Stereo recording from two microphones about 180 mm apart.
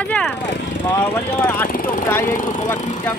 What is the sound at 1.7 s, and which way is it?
Speech, 50° left (ahead or behind).